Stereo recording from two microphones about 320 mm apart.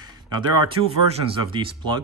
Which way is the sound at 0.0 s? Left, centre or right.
Centre.